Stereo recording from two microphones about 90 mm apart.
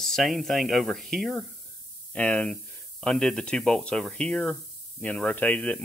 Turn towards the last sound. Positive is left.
turn(degrees=15)  # may be behind; listen again after turning